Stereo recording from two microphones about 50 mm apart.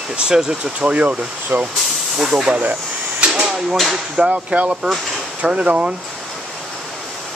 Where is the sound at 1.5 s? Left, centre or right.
Right.